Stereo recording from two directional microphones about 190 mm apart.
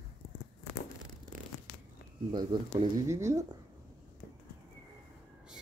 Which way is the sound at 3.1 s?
15° right (ahead or behind).